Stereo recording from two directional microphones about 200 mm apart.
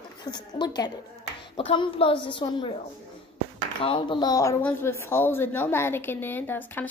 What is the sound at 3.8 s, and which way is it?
A woman's voice, 25° left (ahead or behind).